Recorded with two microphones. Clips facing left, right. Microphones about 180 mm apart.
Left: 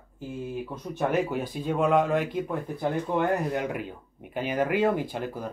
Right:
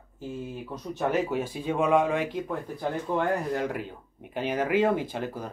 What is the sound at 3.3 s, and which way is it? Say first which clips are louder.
Speech: left 1 dB; 55° left (ahead or behind).